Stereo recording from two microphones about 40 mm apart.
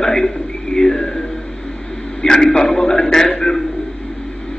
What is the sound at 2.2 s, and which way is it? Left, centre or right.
A man's voice, centre.